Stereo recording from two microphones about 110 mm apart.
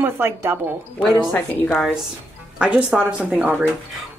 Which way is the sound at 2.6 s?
10° right (ahead or behind).